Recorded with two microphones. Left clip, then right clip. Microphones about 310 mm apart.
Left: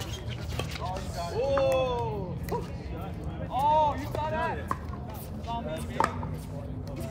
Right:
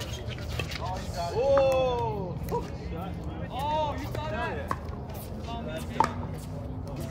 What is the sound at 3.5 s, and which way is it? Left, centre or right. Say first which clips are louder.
Vehicle: left 6 dB; centre.